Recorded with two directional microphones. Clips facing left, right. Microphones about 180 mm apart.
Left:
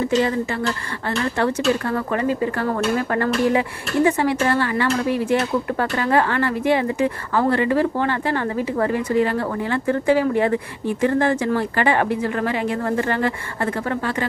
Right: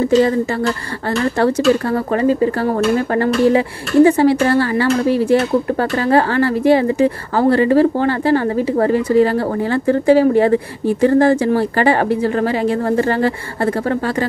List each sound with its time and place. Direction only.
0.0 s speech: 40° right (ahead or behind)
1.4 s speech: 35° right (ahead or behind)